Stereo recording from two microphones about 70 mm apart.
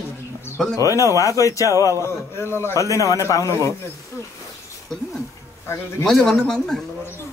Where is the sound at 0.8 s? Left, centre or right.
Left.